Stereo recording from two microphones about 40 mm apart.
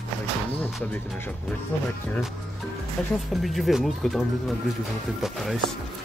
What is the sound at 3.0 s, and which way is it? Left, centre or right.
Speech, centre.